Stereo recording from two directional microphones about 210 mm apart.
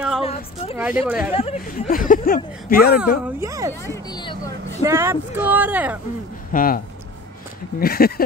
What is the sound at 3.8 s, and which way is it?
Speech, 15° left (ahead or behind).